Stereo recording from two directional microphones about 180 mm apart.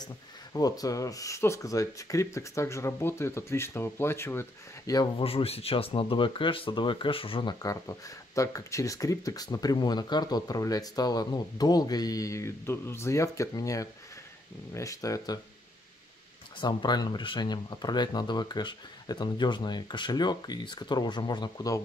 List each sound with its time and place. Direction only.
0.0 s speech: 20° left (ahead or behind)
5.2 s speech: 30° left (ahead or behind)
16.5 s speech: 25° left (ahead or behind)